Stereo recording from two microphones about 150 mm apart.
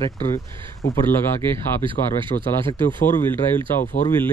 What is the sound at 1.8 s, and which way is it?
Speech, 35° right (ahead or behind).